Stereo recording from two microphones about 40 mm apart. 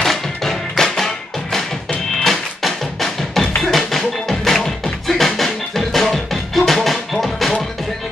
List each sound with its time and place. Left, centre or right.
0.0 s music: centre